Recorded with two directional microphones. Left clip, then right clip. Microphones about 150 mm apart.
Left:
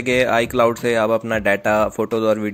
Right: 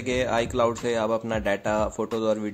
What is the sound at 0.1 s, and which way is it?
A man's voice, 30° left (ahead or behind).